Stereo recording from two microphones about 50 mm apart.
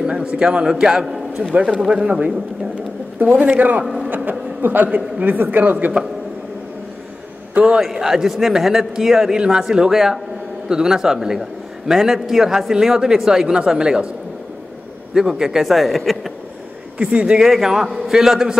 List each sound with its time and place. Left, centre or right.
0.0 s a man's voice: centre
3.2 s a man's voice: right
3.8 s speech: centre
4.1 s a sound: right
5.2 s a man's voice: right
7.8 s a man's voice: centre
15.1 s a man's voice: centre
17.0 s speech: centre
17.4 s a man's voice: centre